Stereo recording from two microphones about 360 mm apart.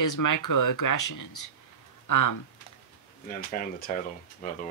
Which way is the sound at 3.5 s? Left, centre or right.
Left.